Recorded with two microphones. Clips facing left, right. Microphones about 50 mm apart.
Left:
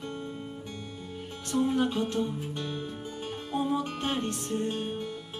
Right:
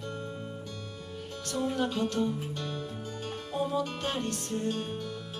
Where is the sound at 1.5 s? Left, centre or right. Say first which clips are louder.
Left 4 dB; left.